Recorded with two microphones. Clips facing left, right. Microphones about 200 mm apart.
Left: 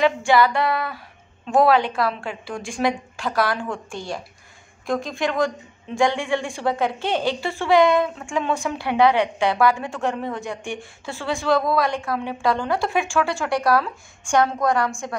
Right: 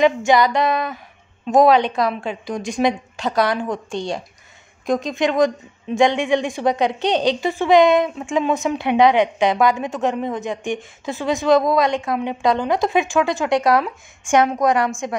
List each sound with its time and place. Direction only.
0.0 s a woman's voice: 20° right (ahead or behind)